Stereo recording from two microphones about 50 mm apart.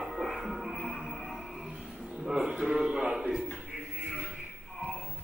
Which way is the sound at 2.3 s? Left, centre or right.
Centre.